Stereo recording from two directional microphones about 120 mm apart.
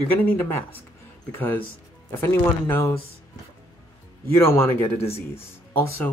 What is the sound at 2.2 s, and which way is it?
Speech, 20° left (ahead or behind).